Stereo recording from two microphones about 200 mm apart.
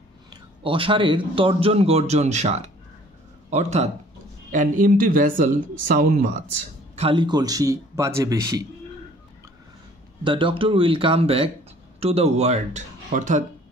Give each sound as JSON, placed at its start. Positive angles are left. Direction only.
{"t": 0.3, "sound": "a man's voice", "side_deg": -25}
{"t": 7.0, "sound": "a man's voice", "side_deg": -25}
{"t": 10.2, "sound": "speech", "side_deg": -25}